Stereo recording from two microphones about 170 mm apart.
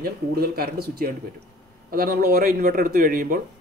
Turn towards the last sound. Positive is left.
turn(degrees=-55)  # may be behind; listen again after turning